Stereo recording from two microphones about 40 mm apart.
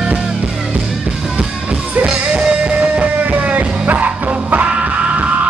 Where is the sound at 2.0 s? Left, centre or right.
Right.